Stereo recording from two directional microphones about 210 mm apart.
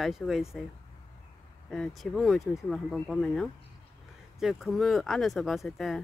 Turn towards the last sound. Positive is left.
turn(degrees=0)  # may be behind; listen again after turning